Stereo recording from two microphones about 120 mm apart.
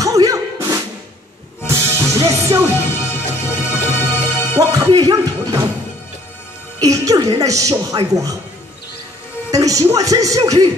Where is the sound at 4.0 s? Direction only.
20° left (ahead or behind).